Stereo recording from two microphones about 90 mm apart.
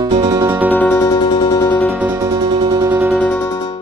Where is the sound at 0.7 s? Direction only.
20° left (ahead or behind).